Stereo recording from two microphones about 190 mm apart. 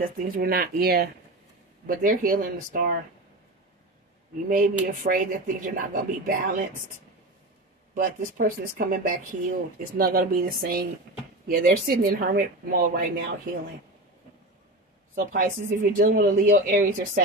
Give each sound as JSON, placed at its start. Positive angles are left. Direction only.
{"t": 0.0, "sound": "speech", "side_deg": -50}
{"t": 4.5, "sound": "speech", "side_deg": -45}
{"t": 7.9, "sound": "speech", "side_deg": -45}
{"t": 15.1, "sound": "speech", "side_deg": -45}